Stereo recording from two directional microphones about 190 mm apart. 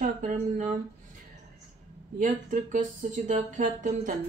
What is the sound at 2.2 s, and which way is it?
Speech, 45° right (ahead or behind).